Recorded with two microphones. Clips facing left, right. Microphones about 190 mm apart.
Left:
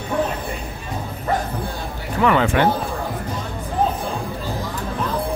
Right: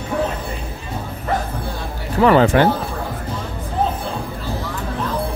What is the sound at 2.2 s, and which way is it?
Speech, 35° right (ahead or behind).